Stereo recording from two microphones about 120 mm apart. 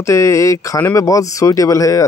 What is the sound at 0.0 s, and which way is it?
Speech, 25° left (ahead or behind).